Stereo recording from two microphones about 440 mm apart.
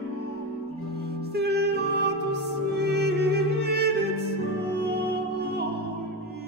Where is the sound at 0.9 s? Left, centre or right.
Right.